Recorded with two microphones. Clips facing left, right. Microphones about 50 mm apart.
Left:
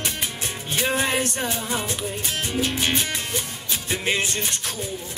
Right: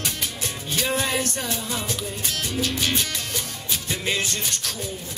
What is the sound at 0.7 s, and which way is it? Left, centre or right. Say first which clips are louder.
Music: left 2 dB; left.